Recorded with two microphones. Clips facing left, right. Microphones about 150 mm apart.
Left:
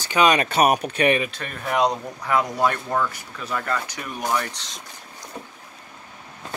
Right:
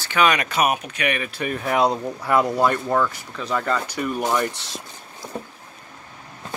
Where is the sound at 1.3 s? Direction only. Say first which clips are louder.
Right 3 dB; 5° right (ahead or behind).